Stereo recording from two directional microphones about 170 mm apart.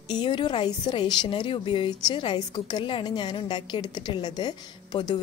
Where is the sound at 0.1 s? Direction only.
25° left (ahead or behind).